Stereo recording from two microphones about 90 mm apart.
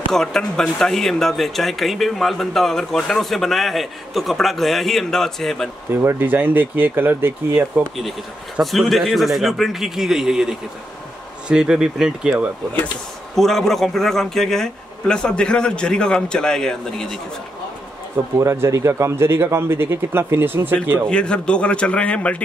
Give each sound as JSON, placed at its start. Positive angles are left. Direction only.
{"t": 0.1, "sound": "speech", "side_deg": 5}
{"t": 6.0, "sound": "speech", "side_deg": -20}
{"t": 8.5, "sound": "speech", "side_deg": 0}
{"t": 13.4, "sound": "speech", "side_deg": 5}
{"t": 18.4, "sound": "speech", "side_deg": -30}
{"t": 21.1, "sound": "speech", "side_deg": 10}